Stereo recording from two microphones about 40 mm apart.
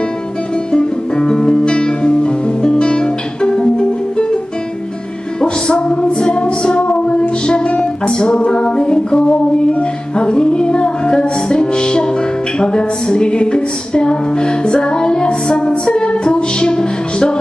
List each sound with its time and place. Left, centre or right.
0.7 s music: left
5.4 s music: left
8.5 s a sound: left
9.7 s music: left